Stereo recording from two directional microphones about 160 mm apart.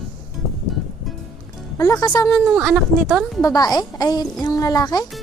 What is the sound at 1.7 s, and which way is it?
Speech, 20° left (ahead or behind).